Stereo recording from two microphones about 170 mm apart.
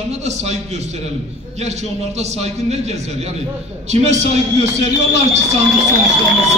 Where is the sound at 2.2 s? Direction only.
40° right (ahead or behind).